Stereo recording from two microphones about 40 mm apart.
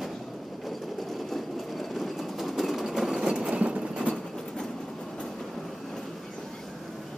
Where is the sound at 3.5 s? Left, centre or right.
Right.